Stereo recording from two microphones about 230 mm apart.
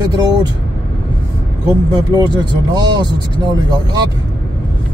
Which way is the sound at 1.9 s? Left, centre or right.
Centre.